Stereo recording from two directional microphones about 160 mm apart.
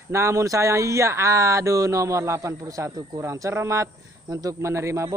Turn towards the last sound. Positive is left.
turn(degrees=-20)  # may be behind; listen again after turning